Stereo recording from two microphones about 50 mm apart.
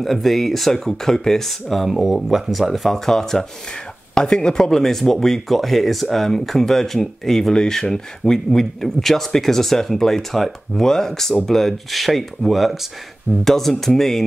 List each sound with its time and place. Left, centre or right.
0.0 s speech: centre